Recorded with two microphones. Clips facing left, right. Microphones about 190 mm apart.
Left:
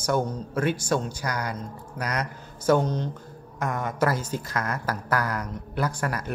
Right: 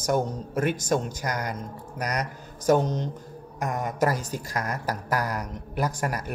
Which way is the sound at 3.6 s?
15° right (ahead or behind).